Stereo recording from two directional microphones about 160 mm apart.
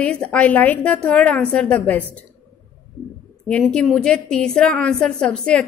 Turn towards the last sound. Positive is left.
turn(degrees=5)  # may be behind; listen again after turning